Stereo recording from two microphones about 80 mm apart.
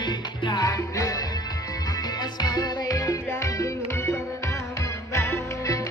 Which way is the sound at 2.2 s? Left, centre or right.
Left.